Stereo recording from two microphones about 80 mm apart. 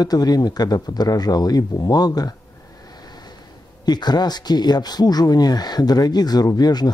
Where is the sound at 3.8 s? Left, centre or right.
Left.